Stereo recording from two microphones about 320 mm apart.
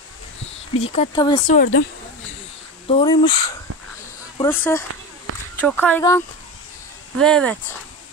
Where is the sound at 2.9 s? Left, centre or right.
Centre.